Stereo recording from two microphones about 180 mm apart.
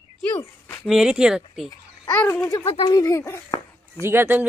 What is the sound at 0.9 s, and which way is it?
Speech, 5° right (ahead or behind).